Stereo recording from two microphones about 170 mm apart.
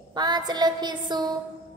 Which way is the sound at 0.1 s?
25° right (ahead or behind).